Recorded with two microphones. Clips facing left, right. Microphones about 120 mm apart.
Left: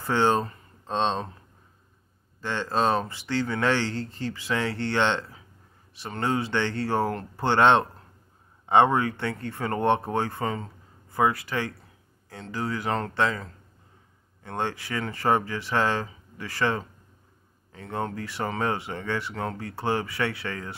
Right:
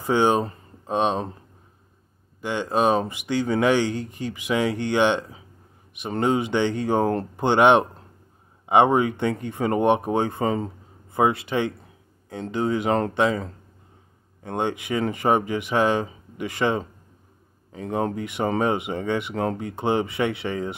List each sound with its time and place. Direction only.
0.0 s speech: 15° right (ahead or behind)
2.4 s speech: 15° right (ahead or behind)
14.4 s speech: 20° right (ahead or behind)